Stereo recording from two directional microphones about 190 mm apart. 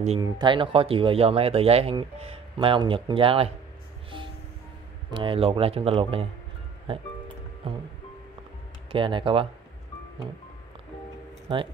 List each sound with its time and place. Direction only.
0.2 s speech: 25° right (ahead or behind)
5.1 s speech: 30° right (ahead or behind)
7.6 s speech: 30° right (ahead or behind)
8.9 s speech: 25° right (ahead or behind)
11.4 s speech: 25° right (ahead or behind)